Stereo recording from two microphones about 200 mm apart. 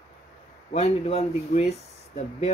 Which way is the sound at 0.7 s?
30° left (ahead or behind).